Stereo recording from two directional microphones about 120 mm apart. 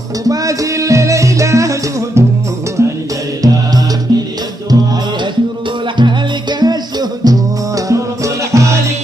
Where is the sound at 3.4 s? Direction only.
30° right (ahead or behind).